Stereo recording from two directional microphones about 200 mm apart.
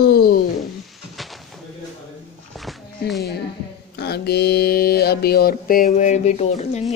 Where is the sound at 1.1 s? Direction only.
Centre (ahead or behind).